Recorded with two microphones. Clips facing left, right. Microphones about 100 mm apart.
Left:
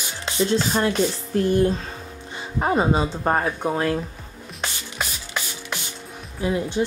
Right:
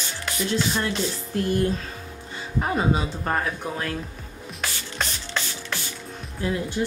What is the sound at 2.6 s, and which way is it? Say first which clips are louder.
Speech: left 4 dB; 25° left (ahead or behind).